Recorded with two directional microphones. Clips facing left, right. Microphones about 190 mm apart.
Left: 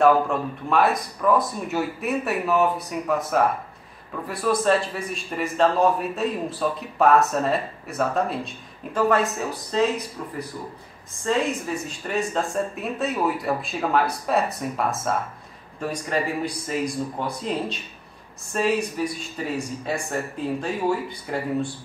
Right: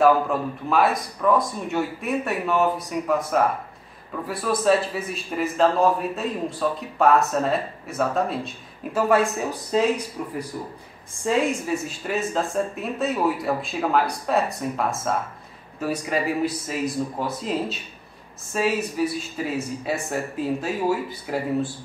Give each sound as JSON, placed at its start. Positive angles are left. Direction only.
{"t": 0.0, "sound": "speech", "side_deg": 0}